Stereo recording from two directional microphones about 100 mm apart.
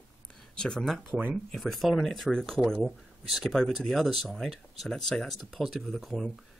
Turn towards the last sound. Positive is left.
turn(degrees=0)  # may be behind; listen again after turning